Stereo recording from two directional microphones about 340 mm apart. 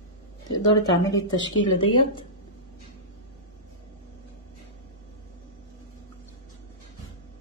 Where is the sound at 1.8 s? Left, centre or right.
Centre.